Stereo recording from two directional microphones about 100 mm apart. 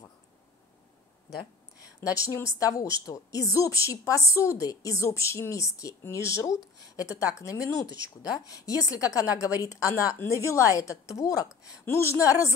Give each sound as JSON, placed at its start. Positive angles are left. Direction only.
{"t": 2.0, "sound": "a woman's voice", "side_deg": 35}